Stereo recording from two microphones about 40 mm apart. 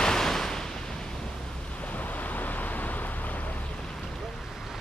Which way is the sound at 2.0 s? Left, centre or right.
Left.